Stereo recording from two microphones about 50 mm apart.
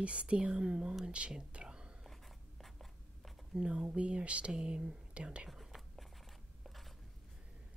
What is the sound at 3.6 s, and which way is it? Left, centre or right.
Speech, right.